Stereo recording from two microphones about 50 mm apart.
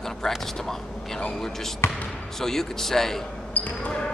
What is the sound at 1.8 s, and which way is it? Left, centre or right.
Speech, left.